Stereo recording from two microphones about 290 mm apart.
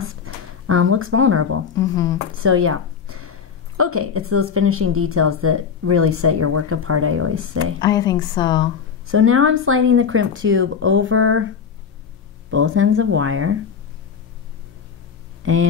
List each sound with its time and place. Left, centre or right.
0.1 s a sound: right
1.8 s a woman's voice: centre
2.4 s a woman's voice: right
7.8 s a woman's voice: centre
9.0 s a woman's voice: right
12.4 s a woman's voice: right